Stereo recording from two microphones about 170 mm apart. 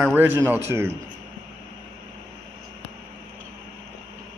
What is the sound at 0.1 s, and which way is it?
Speech, 10° right (ahead or behind).